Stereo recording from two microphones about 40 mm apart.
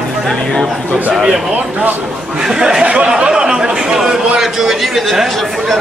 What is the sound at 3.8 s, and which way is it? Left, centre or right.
Speech, centre.